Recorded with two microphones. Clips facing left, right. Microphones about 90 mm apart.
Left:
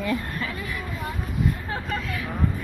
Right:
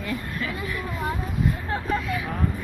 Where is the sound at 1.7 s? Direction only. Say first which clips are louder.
Right 3 dB; 5° right (ahead or behind).